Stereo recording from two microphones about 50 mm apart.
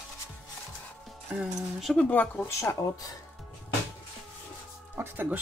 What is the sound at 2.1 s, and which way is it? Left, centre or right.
Speech, left.